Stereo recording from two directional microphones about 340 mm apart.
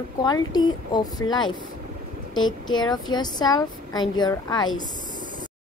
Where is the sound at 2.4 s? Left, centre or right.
Left.